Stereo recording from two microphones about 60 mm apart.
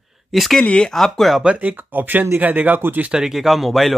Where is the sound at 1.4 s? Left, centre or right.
Right.